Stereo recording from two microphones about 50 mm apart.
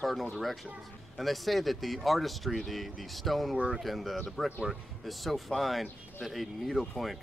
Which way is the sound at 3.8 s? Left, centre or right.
Centre.